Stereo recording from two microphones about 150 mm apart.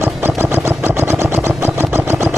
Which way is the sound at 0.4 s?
15° right (ahead or behind).